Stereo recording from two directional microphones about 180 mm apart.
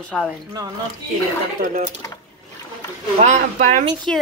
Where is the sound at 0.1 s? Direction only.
5° right (ahead or behind).